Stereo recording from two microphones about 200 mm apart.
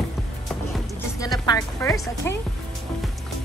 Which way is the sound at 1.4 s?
15° left (ahead or behind).